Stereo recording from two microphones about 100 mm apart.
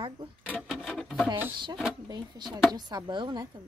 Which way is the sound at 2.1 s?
45° right (ahead or behind).